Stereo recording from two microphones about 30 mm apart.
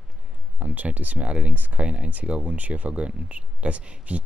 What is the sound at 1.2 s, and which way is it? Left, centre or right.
Speech, right.